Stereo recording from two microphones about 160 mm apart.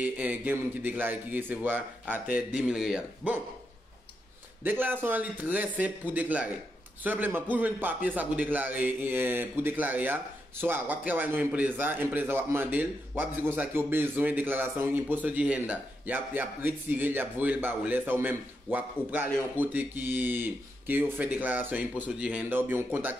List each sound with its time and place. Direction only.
0.0 s a man's voice: 10° right (ahead or behind)
4.6 s a man's voice: 10° right (ahead or behind)